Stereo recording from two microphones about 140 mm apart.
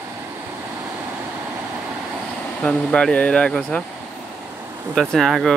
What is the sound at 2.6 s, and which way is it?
Speech, 5° left (ahead or behind).